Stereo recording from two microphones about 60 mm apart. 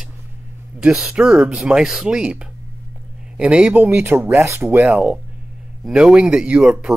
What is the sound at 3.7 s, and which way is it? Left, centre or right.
Speech, right.